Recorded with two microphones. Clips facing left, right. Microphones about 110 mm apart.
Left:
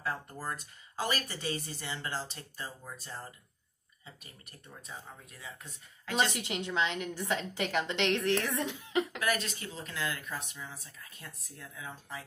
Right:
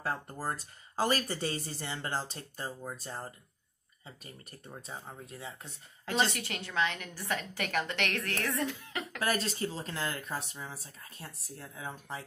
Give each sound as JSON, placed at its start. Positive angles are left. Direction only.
{"t": 0.0, "sound": "speech", "side_deg": -35}
{"t": 6.3, "sound": "a woman's voice", "side_deg": 20}
{"t": 9.2, "sound": "speech", "side_deg": -35}